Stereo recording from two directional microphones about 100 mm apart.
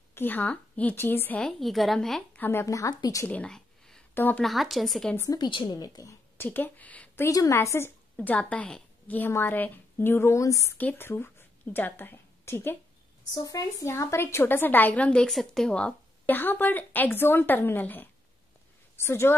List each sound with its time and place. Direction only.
0.1 s a woman's voice: 20° left (ahead or behind)
1.4 s a woman's voice: centre (ahead or behind)
2.3 s speech: 20° left (ahead or behind)
2.6 s speech: 35° left (ahead or behind)
3.3 s a sound: 10° left (ahead or behind)
4.1 s speech: 20° left (ahead or behind)
4.4 s a woman's voice: centre (ahead or behind)
5.3 s a woman's voice: 50° left (ahead or behind)
5.8 s speech: 35° left (ahead or behind)
6.3 s a woman's voice: 20° left (ahead or behind)
7.2 s a woman's voice: 35° left (ahead or behind)
10.8 s a woman's voice: 20° left (ahead or behind)
13.3 s a woman's voice: 35° left (ahead or behind)